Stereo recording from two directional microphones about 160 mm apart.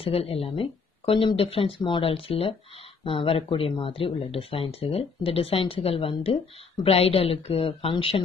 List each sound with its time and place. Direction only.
0.0 s speech: 40° left (ahead or behind)